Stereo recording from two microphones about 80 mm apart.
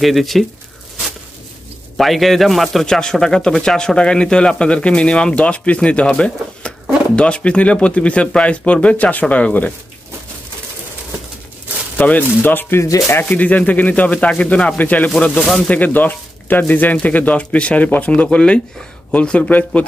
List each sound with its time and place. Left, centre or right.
0.0 s speech: centre
2.0 s speech: centre
12.0 s speech: left; by 15.7 s centre
15.7 s speech: left